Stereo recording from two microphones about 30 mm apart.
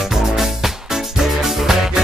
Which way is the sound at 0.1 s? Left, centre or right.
Centre.